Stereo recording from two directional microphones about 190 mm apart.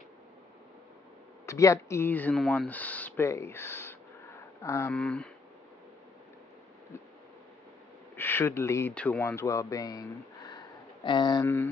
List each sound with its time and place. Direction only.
1.4 s speech: 15° left (ahead or behind)
8.2 s speech: 10° left (ahead or behind)
11.4 s mantra: 10° left (ahead or behind)